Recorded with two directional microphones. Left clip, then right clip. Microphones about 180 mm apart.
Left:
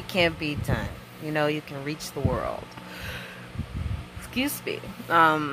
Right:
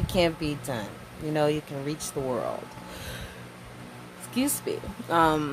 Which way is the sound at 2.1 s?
Centre (ahead or behind).